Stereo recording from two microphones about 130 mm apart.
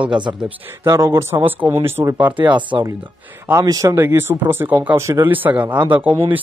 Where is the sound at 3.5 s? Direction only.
25° right (ahead or behind).